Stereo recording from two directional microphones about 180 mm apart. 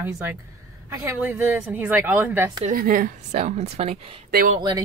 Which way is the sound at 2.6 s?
50° right (ahead or behind).